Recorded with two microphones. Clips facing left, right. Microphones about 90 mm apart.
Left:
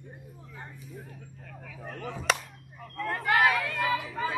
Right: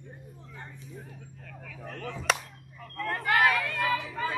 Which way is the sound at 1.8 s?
15° left (ahead or behind).